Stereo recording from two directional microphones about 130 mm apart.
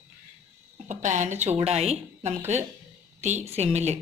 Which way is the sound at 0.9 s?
70° right (ahead or behind).